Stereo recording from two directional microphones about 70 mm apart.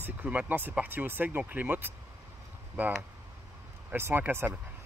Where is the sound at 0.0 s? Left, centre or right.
Right.